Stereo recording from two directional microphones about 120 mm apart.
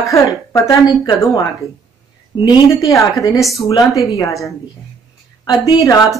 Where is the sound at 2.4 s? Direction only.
30° left (ahead or behind).